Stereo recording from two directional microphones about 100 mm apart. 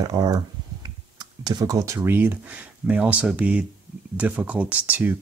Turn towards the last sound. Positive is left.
turn(degrees=-20)  # may be behind; listen again after turning